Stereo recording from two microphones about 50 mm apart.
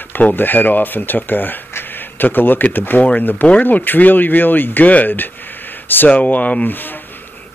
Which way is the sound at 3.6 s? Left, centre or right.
Left.